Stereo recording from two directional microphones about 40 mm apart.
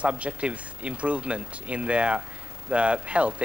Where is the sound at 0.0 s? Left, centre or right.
Right.